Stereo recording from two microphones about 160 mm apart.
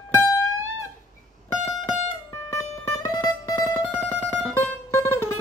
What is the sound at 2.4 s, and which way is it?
Music, 15° left (ahead or behind).